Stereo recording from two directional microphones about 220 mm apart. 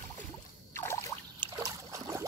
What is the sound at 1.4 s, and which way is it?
Boat, 15° right (ahead or behind).